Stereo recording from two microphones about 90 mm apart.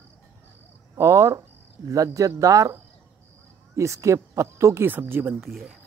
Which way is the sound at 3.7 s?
35° right (ahead or behind).